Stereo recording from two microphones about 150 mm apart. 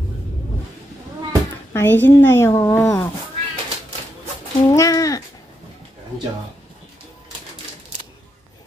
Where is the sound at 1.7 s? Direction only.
15° left (ahead or behind).